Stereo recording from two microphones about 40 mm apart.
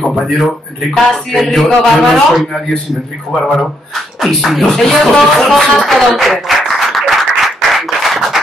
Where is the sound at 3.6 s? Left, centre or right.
Centre.